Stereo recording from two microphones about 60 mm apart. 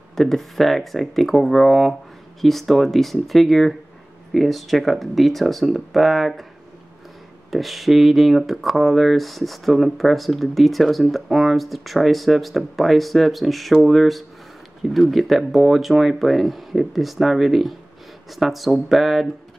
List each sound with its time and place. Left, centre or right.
0.1 s speech: centre
7.5 s speech: centre